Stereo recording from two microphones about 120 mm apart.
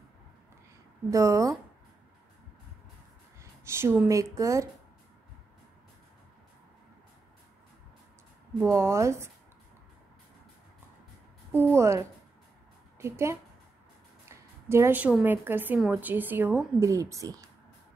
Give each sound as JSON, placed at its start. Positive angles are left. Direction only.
{"t": 1.1, "sound": "speech", "side_deg": -25}
{"t": 3.3, "sound": "speech", "side_deg": -20}
{"t": 8.5, "sound": "speech", "side_deg": -20}
{"t": 11.5, "sound": "speech", "side_deg": -20}
{"t": 14.3, "sound": "a sound", "side_deg": -20}
{"t": 15.2, "sound": "a woman's voice", "side_deg": -15}
{"t": 16.8, "sound": "speech", "side_deg": -30}